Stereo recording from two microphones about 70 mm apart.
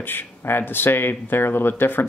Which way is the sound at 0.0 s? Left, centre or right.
Left.